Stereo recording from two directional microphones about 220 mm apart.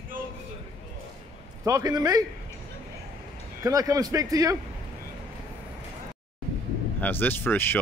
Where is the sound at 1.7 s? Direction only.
15° right (ahead or behind).